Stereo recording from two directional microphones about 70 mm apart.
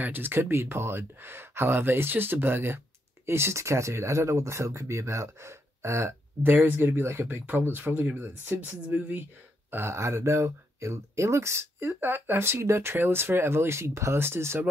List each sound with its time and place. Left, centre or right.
0.0 s speech: right
6.5 s speech: right